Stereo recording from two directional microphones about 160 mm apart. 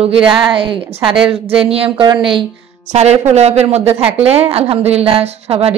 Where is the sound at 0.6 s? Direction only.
35° right (ahead or behind).